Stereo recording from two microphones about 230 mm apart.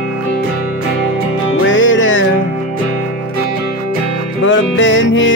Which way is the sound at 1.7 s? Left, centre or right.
Left.